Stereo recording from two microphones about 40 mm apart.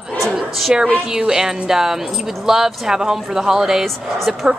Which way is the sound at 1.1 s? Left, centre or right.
Centre.